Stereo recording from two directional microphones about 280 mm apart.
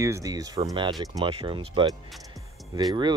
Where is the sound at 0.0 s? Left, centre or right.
Centre.